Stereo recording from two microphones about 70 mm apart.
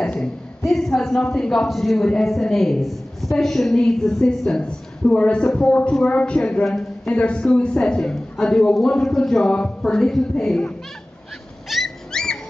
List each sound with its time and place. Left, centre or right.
0.7 s a sound: centre
1.2 s a man's voice: centre
11.7 s dog: centre